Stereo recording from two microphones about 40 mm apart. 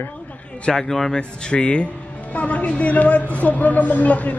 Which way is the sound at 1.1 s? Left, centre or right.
Left.